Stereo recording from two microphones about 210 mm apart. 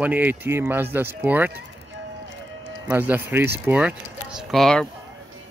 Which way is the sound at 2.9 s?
10° right (ahead or behind).